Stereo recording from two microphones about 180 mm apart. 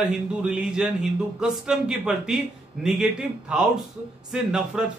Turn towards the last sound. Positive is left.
turn(degrees=-5)  # may be behind; listen again after turning